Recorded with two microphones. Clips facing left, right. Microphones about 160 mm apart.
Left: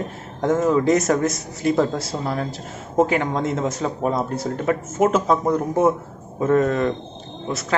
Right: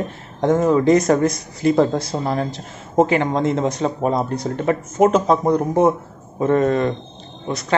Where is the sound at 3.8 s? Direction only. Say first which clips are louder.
Right 3 dB; 25° right (ahead or behind).